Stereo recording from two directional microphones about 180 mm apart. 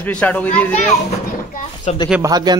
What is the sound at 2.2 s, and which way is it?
Speech, 20° right (ahead or behind).